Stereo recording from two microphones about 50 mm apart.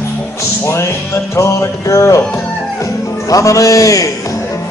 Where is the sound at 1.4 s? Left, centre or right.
Left.